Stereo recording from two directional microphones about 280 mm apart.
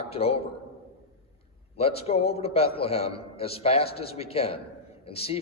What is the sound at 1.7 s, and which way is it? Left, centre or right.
A man's voice, left.